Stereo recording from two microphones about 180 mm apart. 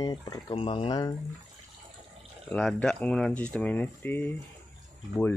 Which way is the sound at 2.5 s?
5° left (ahead or behind).